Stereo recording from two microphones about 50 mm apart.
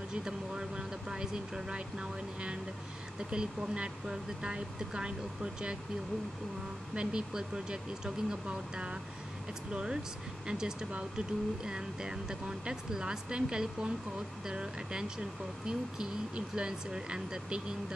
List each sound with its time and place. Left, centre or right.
0.1 s speech: centre
7.0 s speech: centre